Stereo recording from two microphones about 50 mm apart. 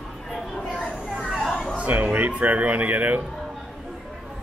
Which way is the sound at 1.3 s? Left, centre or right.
Centre.